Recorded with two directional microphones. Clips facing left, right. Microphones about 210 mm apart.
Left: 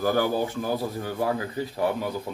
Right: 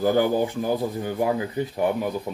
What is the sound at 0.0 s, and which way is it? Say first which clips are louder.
Speech: right 3 dB; 15° right (ahead or behind).